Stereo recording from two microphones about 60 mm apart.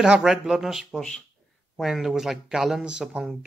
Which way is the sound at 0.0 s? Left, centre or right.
Centre.